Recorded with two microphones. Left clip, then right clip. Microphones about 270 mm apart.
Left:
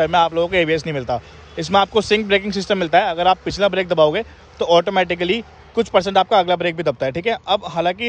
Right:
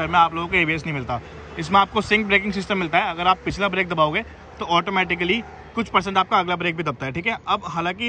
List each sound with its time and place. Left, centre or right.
0.0 s speech: left